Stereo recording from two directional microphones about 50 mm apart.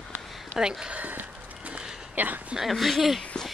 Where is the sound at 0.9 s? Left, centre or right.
Right.